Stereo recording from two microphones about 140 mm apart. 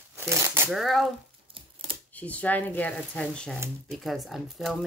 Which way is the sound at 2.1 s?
10° left (ahead or behind).